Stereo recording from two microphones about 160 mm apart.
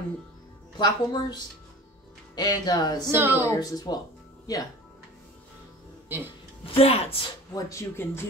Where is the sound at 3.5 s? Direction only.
20° left (ahead or behind).